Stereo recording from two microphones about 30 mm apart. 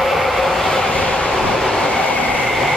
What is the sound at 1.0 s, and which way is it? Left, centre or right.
Vehicle, left.